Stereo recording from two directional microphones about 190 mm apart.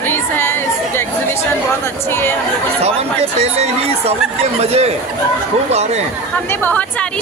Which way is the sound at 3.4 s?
35° right (ahead or behind).